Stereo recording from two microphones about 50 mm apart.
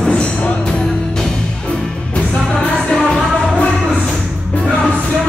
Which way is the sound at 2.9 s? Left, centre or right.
Centre.